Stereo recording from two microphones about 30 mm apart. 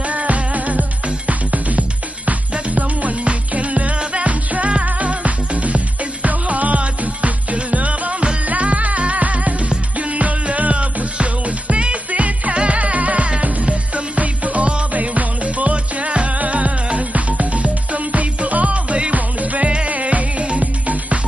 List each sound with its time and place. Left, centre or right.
0.1 s music: right
16.3 s music: right
19.1 s music: right
19.6 s music: right
19.9 s music: right